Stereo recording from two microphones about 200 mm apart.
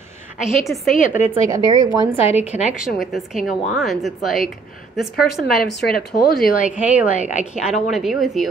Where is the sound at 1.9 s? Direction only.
30° left (ahead or behind).